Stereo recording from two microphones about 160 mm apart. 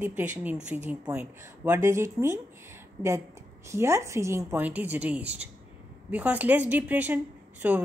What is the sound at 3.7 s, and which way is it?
Speech, 20° right (ahead or behind).